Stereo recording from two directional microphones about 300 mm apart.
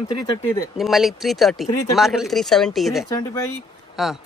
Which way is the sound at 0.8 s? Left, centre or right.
Centre.